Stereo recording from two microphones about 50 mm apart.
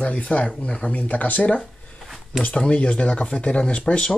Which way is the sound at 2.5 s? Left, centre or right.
Centre.